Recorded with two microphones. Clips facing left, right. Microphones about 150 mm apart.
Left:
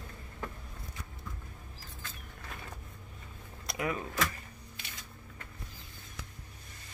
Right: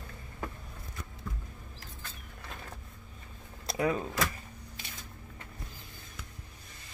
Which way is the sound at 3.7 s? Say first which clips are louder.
Right 5 dB; 30° right (ahead or behind).